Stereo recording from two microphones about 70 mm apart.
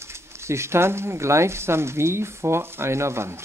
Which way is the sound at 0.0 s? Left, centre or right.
Right.